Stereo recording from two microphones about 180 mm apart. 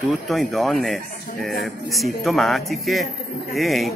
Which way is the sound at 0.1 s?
Centre (ahead or behind).